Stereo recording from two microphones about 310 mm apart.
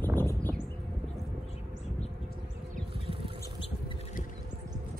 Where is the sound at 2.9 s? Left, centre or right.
Centre.